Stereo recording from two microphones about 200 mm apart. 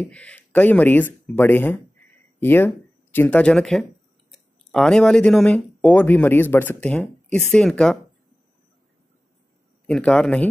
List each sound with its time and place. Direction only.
0.0 s speech: 5° left (ahead or behind)
9.8 s a man's voice: 5° left (ahead or behind)